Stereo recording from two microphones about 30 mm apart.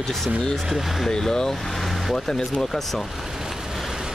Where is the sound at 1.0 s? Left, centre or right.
Centre.